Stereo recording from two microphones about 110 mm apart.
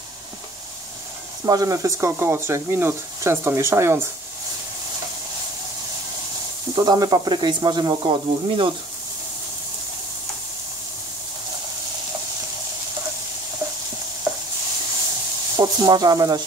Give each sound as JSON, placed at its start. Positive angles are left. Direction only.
{"t": 1.4, "sound": "speech", "side_deg": -30}
{"t": 6.7, "sound": "speech", "side_deg": -40}
{"t": 15.5, "sound": "speech", "side_deg": -40}